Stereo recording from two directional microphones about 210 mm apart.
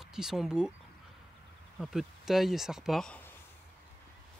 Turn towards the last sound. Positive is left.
turn(degrees=0)  # may be behind; listen again after turning